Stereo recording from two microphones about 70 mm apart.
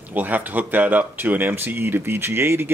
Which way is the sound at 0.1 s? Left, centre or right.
Right.